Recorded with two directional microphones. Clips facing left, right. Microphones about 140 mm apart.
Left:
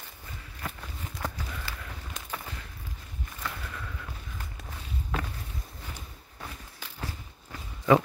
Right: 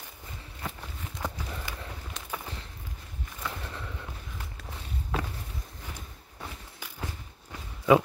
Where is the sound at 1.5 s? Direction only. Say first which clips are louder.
Right 1 dB; 25° right (ahead or behind).